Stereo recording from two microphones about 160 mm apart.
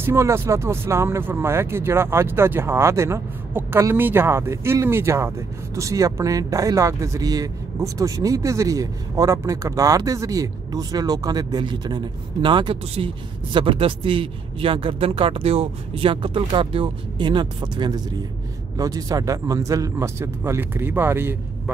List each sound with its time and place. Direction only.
0.0 s speech: 15° right (ahead or behind)